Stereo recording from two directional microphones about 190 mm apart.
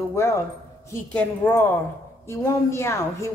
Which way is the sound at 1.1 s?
10° left (ahead or behind).